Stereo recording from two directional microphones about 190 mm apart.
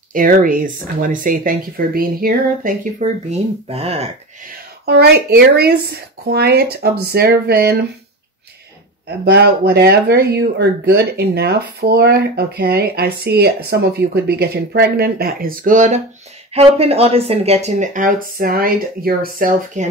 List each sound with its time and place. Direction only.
0.1 s speech: 45° right (ahead or behind)
4.8 s speech: 60° right (ahead or behind)
9.2 s speech: 55° right (ahead or behind)